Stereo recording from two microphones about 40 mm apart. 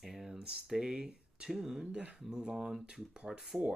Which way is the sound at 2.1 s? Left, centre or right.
Centre.